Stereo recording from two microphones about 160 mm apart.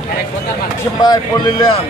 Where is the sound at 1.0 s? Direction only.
25° left (ahead or behind).